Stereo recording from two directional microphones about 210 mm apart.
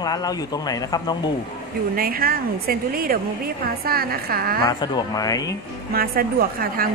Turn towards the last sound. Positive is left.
turn(degrees=-45)  # may be behind; listen again after turning